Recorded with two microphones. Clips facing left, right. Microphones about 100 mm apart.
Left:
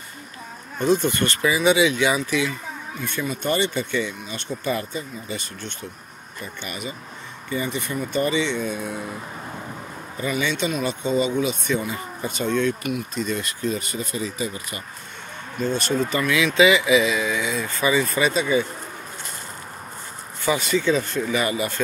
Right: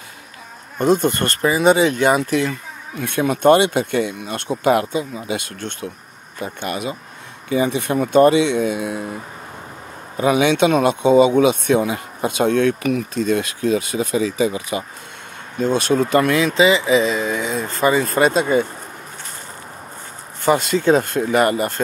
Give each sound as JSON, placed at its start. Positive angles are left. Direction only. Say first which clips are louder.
{"t": 0.7, "sound": "speech", "louder": "right 4 dB", "side_deg": -50}
{"t": 3.0, "sound": "speech", "louder": "right 10 dB", "side_deg": -65}
{"t": 10.1, "sound": "speech", "louder": "right 9 dB", "side_deg": -75}
{"t": 13.3, "sound": "speech", "louder": "right 9 dB", "side_deg": -80}
{"t": 15.7, "sound": "speech", "louder": "right 8 dB", "side_deg": -60}
{"t": 16.5, "sound": "speech", "louder": "even", "side_deg": -30}
{"t": 20.4, "sound": "speech", "louder": "right 5 dB", "side_deg": -50}